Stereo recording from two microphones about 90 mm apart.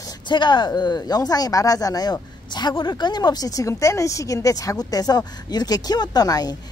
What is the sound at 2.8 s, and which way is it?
Speech, 55° left (ahead or behind).